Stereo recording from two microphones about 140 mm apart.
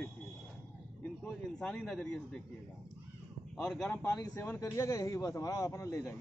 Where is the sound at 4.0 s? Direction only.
25° left (ahead or behind).